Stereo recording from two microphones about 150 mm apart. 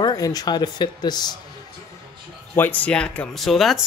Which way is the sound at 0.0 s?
25° left (ahead or behind).